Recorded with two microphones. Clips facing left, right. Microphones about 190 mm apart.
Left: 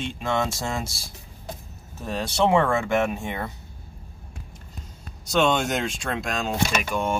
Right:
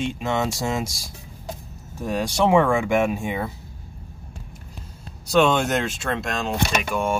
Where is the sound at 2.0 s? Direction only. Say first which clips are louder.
Right 2 dB; 10° right (ahead or behind).